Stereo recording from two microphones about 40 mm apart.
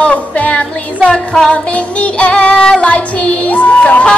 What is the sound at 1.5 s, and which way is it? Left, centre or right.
Music, left.